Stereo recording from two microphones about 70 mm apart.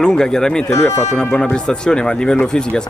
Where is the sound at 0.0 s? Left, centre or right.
Centre.